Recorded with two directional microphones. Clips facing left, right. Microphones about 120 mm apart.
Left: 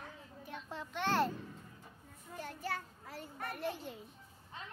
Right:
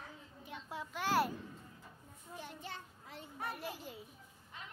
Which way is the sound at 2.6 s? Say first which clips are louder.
Left 7 dB; 20° right (ahead or behind).